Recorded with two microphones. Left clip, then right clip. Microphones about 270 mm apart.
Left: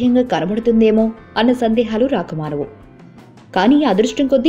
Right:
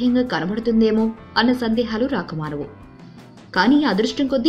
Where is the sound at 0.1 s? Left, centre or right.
Centre.